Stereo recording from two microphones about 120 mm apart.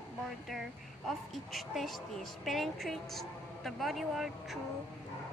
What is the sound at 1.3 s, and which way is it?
A woman's voice, centre (ahead or behind).